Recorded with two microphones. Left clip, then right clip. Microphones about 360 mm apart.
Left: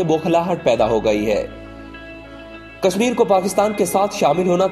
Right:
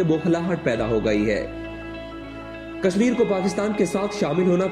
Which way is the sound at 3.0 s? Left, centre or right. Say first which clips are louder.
Left 6 dB; left.